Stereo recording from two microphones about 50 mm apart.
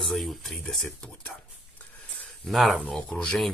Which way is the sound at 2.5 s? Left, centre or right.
Centre.